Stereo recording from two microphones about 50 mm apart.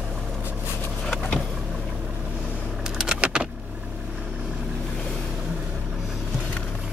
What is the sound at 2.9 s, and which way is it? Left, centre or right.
Vehicle, centre.